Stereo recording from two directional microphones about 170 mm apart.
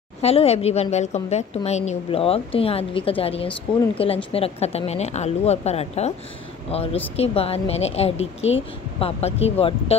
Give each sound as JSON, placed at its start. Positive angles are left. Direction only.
{"t": 0.2, "sound": "a woman's voice", "side_deg": 35}